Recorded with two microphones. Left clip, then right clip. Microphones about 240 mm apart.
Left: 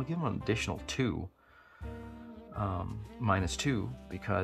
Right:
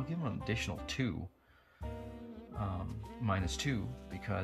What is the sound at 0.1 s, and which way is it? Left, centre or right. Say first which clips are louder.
Speech: left 7 dB; centre.